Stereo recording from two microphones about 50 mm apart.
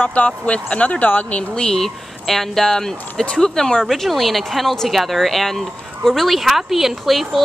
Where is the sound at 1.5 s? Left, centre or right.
Centre.